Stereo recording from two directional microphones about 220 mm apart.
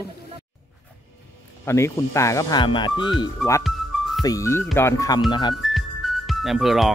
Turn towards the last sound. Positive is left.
turn(degrees=0)  # may be behind; listen again after turning